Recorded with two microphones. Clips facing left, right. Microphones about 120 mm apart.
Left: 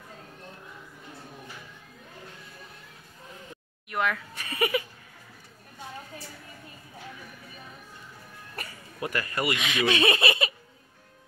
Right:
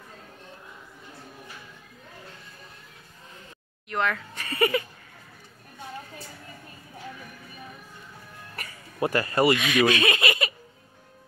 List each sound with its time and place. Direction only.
3.9 s speech: 10° left (ahead or behind)
9.0 s speech: 30° right (ahead or behind)
9.6 s speech: 25° left (ahead or behind)